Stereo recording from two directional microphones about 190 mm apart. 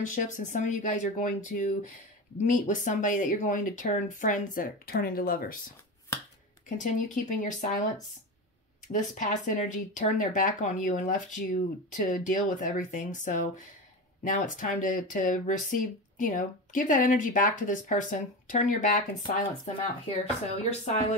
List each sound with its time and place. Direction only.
0.0 s speech: 40° left (ahead or behind)
6.1 s finger snapping: 15° left (ahead or behind)
6.8 s speech: 40° left (ahead or behind)
8.8 s speech: 45° left (ahead or behind)